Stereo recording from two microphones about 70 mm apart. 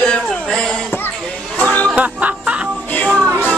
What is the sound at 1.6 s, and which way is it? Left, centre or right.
Music, centre.